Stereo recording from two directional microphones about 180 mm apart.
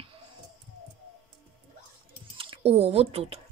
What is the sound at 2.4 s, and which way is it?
Speech, 30° right (ahead or behind).